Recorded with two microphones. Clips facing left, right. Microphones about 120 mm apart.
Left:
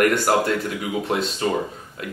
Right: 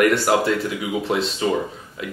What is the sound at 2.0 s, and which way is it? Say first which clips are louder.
Speech: right 2 dB; 45° left (ahead or behind).